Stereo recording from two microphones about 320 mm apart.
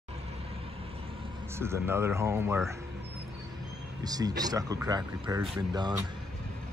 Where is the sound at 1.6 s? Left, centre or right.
Centre.